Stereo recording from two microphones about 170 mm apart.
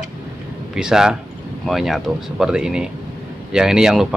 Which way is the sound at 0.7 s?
5° right (ahead or behind).